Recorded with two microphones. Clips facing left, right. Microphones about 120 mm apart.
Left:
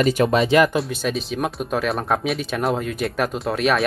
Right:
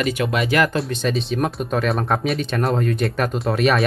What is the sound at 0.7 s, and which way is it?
Speech, 5° left (ahead or behind).